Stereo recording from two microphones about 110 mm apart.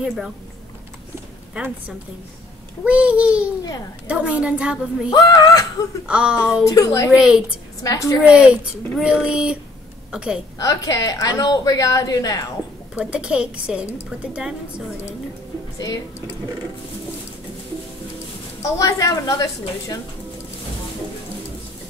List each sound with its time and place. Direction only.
0.0 s a woman's voice: 5° right (ahead or behind)
1.5 s a woman's voice: 10° right (ahead or behind)
5.1 s a woman's voice: 35° left (ahead or behind)
6.0 s a woman's voice: 10° right (ahead or behind)
6.7 s a woman's voice: 30° left (ahead or behind)
7.1 s a woman's voice: 10° right (ahead or behind)
7.8 s a woman's voice: 30° left (ahead or behind)
8.2 s a woman's voice: 10° right (ahead or behind)
10.6 s a woman's voice: 30° left (ahead or behind)
12.9 s a woman's voice: 10° right (ahead or behind)
15.8 s a woman's voice: 35° left (ahead or behind)
18.6 s a woman's voice: 30° left (ahead or behind)